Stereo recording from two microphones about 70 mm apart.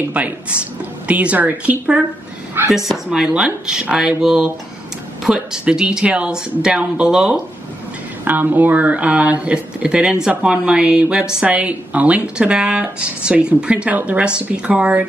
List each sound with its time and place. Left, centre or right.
0.1 s speech: right
2.7 s speech: centre
8.3 s speech: right